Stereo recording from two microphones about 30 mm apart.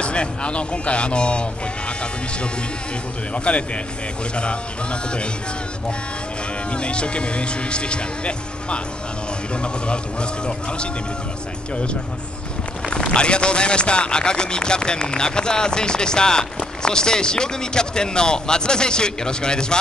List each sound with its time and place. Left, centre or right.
0.0 s speech: left
3.3 s speech: left
6.7 s speech: left
13.1 s speech: left